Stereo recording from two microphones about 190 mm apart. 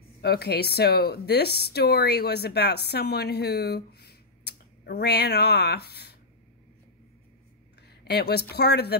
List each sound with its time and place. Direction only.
0.2 s a woman's voice: 55° left (ahead or behind)
8.0 s speech: 60° left (ahead or behind)